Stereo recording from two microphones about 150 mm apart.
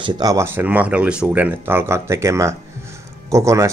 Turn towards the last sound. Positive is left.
turn(degrees=-20)  # may be behind; listen again after turning